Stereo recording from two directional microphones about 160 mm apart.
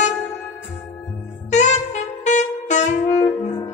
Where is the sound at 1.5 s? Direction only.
45° left (ahead or behind).